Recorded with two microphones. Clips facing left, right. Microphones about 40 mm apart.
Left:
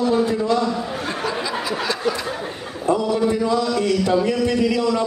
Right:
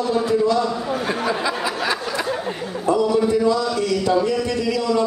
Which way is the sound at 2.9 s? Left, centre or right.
Left.